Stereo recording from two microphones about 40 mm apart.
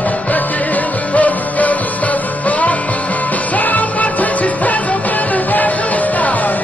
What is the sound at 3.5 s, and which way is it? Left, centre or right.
Music, left.